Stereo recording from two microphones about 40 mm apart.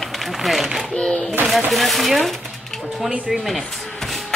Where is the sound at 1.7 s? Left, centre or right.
Centre.